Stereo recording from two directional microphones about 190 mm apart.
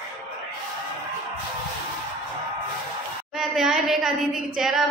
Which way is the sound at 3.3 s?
Centre (ahead or behind).